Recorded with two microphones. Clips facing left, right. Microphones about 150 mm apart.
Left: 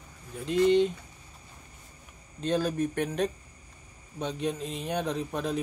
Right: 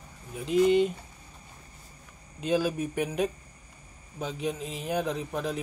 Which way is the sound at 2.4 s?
5° right (ahead or behind).